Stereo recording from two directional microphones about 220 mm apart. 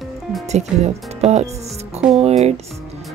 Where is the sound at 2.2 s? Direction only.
30° right (ahead or behind).